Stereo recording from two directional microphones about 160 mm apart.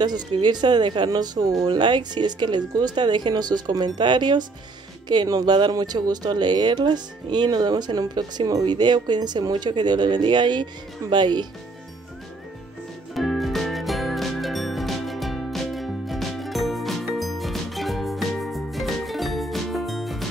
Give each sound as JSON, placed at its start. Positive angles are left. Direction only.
{"t": 0.0, "sound": "speech", "side_deg": -25}
{"t": 13.1, "sound": "music", "side_deg": 0}